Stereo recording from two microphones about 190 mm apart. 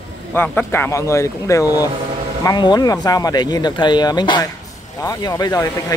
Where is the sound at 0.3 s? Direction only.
10° left (ahead or behind).